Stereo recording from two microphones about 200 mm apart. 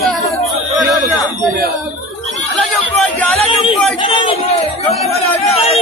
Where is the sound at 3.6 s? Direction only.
25° left (ahead or behind).